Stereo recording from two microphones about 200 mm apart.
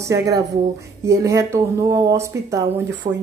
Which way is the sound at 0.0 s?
15° right (ahead or behind).